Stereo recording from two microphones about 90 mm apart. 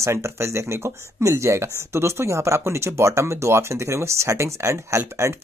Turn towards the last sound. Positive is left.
turn(degrees=-30)  # may be behind; listen again after turning